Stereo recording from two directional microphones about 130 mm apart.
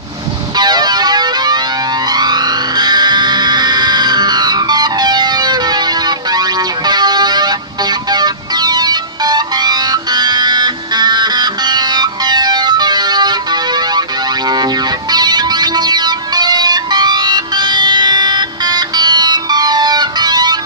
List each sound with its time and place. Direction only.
0.6 s music: 30° right (ahead or behind)